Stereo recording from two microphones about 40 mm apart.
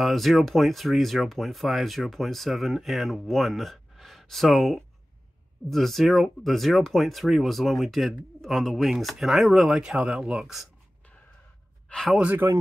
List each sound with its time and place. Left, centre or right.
0.0 s speech: centre; by 10.5 s right
11.9 s speech: left